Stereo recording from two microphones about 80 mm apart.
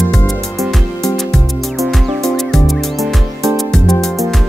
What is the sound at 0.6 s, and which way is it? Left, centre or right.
Music, centre.